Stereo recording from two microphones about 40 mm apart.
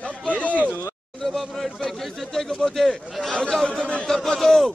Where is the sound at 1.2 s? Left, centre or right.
Centre.